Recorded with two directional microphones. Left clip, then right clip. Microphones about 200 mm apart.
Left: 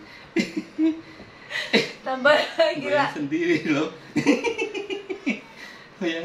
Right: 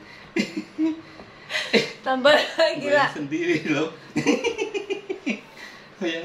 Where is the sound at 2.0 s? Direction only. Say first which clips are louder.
Right 2 dB; 55° right (ahead or behind).